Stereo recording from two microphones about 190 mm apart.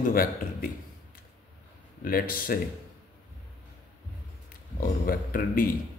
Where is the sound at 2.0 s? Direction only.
50° left (ahead or behind).